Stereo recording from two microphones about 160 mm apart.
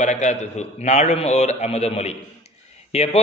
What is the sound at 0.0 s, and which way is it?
A man's voice, 45° left (ahead or behind).